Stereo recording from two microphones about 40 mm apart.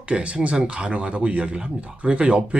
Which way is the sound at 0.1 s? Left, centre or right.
Right.